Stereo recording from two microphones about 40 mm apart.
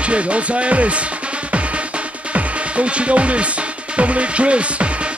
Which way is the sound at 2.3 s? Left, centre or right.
Right.